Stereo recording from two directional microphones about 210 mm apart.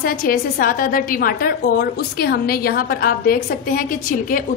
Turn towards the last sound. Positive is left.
turn(degrees=45)  # may be behind; listen again after turning